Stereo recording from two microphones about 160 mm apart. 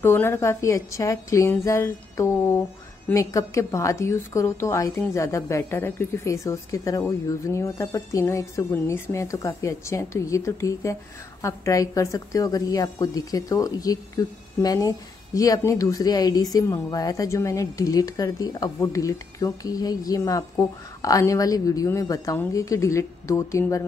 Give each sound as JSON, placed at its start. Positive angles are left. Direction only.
{"t": 0.0, "sound": "a woman's voice", "side_deg": 15}